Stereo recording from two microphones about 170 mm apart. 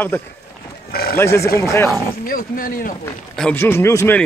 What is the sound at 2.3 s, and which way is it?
Speech, 55° left (ahead or behind).